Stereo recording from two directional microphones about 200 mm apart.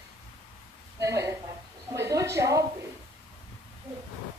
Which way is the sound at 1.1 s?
15° right (ahead or behind).